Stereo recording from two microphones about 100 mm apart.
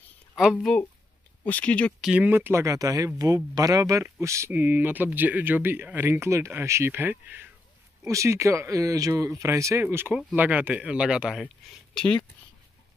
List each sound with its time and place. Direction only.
0.6 s speech: 5° left (ahead or behind)
2.0 s speech: 5° right (ahead or behind)
2.2 s speech: 20° right (ahead or behind)
4.5 s speech: 20° right (ahead or behind)
8.1 s speech: 30° right (ahead or behind); by 11.4 s 10° right (ahead or behind)
11.4 s speech: 10° left (ahead or behind)